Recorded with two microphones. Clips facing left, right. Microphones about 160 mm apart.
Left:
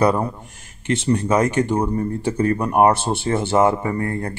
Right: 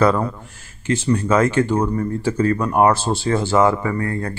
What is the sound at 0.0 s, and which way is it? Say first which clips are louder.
A man's voice: right 1 dB; 15° left (ahead or behind).